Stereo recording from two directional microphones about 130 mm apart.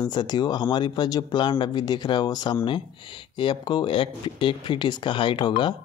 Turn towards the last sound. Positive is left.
turn(degrees=35)  # may be behind; listen again after turning